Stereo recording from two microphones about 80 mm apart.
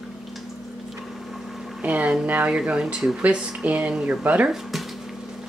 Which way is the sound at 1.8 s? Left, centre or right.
Centre.